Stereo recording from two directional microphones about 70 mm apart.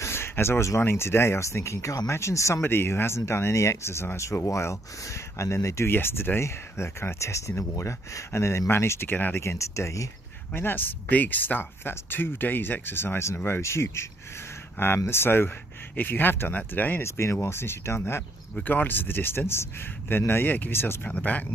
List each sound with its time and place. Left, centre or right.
0.0 s speech: left
5.9 s speech: left
9.4 s speech: left
10.5 s speech: left
15.0 s speech: left
17.0 s speech: left
18.6 s speech: left